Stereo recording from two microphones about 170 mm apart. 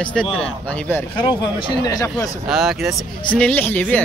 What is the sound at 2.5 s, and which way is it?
Speech, centre (ahead or behind).